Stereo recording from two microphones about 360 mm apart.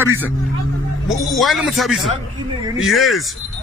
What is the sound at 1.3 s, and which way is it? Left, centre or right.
A man's voice, centre.